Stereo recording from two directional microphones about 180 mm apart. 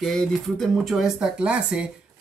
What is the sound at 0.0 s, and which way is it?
Speech, 5° left (ahead or behind).